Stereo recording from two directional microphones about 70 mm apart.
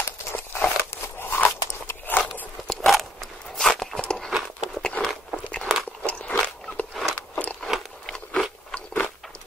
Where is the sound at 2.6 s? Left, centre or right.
Centre.